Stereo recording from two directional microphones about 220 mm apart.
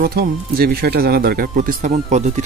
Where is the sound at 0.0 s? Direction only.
40° right (ahead or behind).